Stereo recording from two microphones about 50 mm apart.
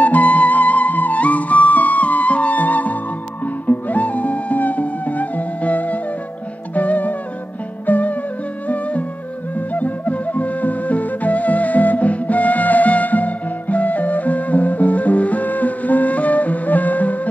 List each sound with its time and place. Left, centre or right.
0.0 s music: left
9.8 s flute: left